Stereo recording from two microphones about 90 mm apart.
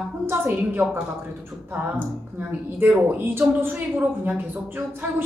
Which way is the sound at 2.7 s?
25° right (ahead or behind).